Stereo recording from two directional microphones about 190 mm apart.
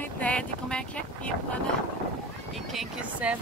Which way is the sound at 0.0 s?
5° left (ahead or behind).